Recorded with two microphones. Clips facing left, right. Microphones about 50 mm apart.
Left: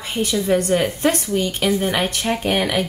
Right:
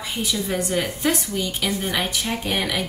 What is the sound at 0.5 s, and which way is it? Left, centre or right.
Speech, left.